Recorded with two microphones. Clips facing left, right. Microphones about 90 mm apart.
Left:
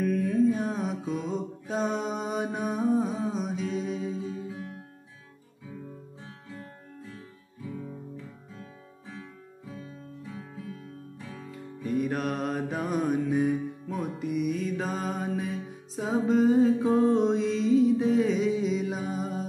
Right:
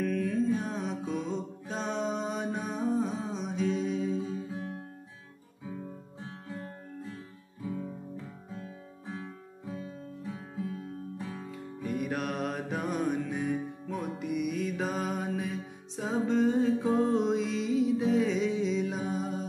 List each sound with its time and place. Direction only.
0.0 s music: 10° left (ahead or behind)
2.9 s humming: 5° left (ahead or behind)
9.0 s guitar: 35° right (ahead or behind)
11.1 s music: 30° right (ahead or behind)
11.5 s music: centre (ahead or behind)